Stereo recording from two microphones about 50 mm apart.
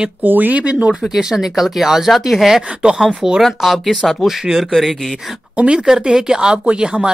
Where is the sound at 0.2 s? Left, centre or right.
Right.